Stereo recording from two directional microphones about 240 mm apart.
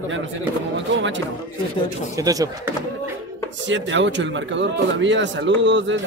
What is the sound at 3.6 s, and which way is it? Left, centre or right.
Speech, right.